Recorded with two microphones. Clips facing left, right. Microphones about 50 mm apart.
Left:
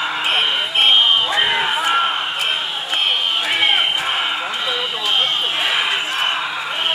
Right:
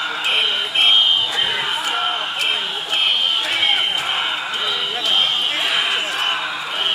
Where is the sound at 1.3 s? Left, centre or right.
Left.